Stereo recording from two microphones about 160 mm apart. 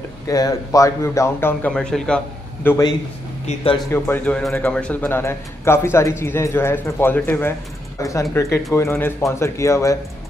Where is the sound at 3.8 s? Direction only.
15° left (ahead or behind).